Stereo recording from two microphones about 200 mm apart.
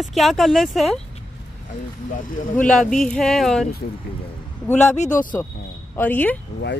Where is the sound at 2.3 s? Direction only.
45° left (ahead or behind).